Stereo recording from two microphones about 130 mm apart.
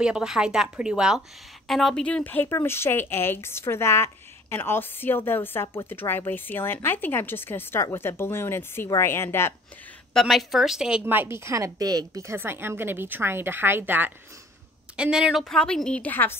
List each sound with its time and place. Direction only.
0.0 s a woman's voice: 5° right (ahead or behind); by 9.5 s 20° left (ahead or behind)
10.1 s a woman's voice: centre (ahead or behind)